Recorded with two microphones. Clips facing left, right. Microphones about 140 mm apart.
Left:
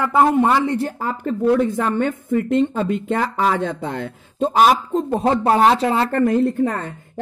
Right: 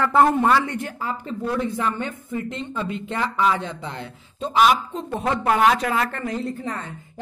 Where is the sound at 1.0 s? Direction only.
50° left (ahead or behind); by 6.1 s 30° left (ahead or behind).